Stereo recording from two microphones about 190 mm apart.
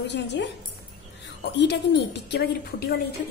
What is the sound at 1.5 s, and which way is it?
A woman's voice, 65° left (ahead or behind).